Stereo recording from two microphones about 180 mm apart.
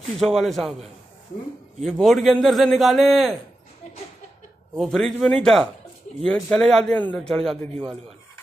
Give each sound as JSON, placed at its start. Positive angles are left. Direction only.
{"t": 0.0, "sound": "a man's voice", "side_deg": 0}
{"t": 4.7, "sound": "a man's voice", "side_deg": 0}